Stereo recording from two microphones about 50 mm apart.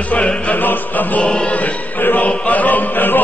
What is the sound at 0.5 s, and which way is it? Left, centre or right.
Music, left.